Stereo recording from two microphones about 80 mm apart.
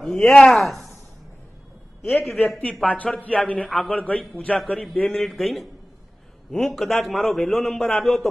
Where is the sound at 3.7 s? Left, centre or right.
Centre.